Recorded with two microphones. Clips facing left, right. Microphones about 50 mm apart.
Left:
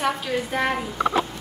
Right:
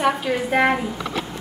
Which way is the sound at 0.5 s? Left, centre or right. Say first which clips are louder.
Right 7 dB; right.